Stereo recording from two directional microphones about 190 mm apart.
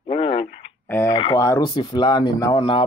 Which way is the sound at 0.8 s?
10° left (ahead or behind).